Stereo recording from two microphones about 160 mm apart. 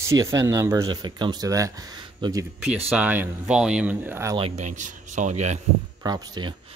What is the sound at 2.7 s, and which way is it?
Speech, 5° right (ahead or behind).